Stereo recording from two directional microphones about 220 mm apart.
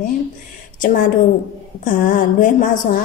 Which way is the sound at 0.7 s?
35° left (ahead or behind).